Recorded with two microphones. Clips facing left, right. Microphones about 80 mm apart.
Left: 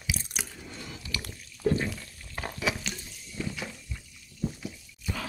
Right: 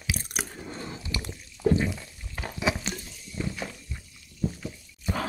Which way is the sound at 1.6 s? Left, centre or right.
Centre.